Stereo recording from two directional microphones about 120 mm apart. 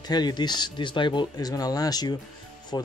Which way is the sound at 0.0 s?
35° left (ahead or behind).